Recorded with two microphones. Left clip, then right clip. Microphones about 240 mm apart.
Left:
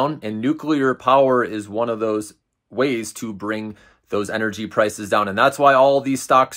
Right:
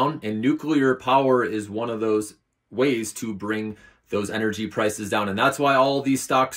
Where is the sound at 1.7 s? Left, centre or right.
Centre.